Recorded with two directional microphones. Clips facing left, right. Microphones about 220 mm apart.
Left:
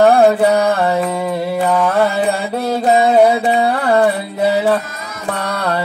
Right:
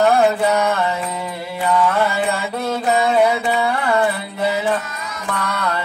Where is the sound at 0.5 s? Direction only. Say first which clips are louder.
Left 4 dB; 35° left (ahead or behind).